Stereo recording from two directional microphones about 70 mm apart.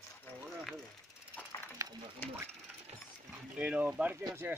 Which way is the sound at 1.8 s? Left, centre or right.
Right.